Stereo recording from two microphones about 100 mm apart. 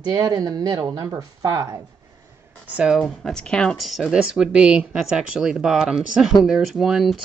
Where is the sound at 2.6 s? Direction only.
10° right (ahead or behind).